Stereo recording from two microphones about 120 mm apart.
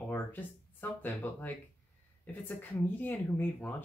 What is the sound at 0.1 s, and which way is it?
Speech, 15° left (ahead or behind).